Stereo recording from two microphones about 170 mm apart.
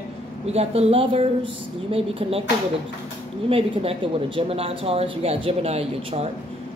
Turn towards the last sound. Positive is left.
turn(degrees=-40)  # may be behind; listen again after turning